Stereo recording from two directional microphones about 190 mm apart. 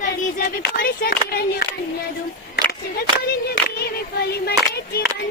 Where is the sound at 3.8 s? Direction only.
55° left (ahead or behind).